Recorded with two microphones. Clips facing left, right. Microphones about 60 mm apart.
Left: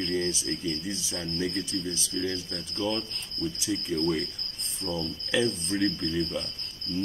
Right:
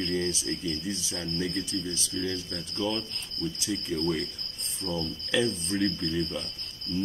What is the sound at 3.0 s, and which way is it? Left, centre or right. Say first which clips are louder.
Speech: left 1 dB; left.